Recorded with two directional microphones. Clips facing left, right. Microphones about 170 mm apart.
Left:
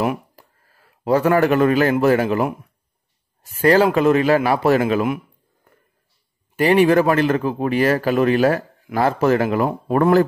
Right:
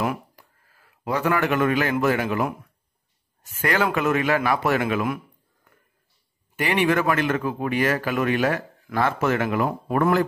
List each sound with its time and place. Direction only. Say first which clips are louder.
0.4 s a man's voice: left 4 dB; 35° left (ahead or behind)
3.4 s speech: left 9 dB; 35° left (ahead or behind)
6.5 s speech: left 8 dB; 35° left (ahead or behind)